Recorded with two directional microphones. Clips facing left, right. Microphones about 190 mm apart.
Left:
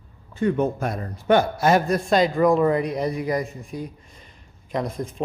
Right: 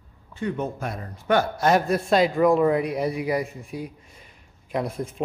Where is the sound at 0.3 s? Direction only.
50° left (ahead or behind).